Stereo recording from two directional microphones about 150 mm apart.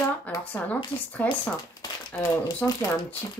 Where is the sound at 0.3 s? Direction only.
10° left (ahead or behind).